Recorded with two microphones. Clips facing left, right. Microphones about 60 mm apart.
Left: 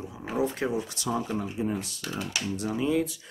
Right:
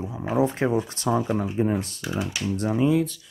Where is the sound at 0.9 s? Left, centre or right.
Right.